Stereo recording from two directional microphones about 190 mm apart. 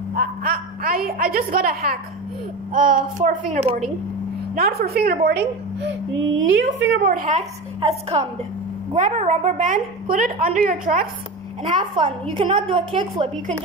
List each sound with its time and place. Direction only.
0.1 s a sound: 50° right (ahead or behind)
2.7 s a woman's voice: 45° right (ahead or behind)
4.6 s a woman's voice: 55° right (ahead or behind); by 6.7 s 75° right (ahead or behind)
7.1 s a woman's voice: 45° right (ahead or behind)
11.7 s a woman's voice: 25° right (ahead or behind)